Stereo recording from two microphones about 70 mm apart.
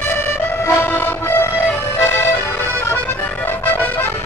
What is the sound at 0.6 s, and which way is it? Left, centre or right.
Music, left.